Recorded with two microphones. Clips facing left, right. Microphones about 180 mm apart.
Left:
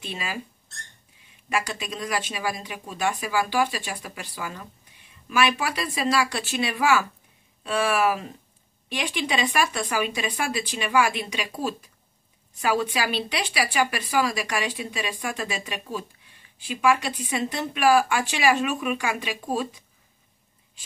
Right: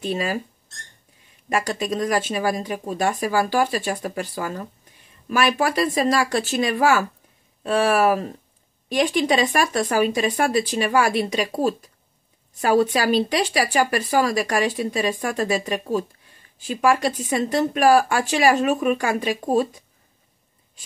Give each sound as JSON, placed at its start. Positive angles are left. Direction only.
{"t": 0.0, "sound": "speech", "side_deg": -45}
{"t": 1.5, "sound": "a woman's voice", "side_deg": -40}